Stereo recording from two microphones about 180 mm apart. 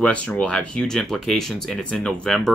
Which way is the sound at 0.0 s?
5° left (ahead or behind).